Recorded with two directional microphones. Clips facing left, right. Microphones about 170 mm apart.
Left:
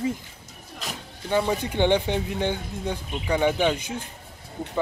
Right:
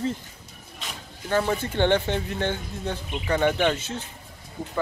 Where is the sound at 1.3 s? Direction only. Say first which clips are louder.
Left 1 dB; 15° left (ahead or behind).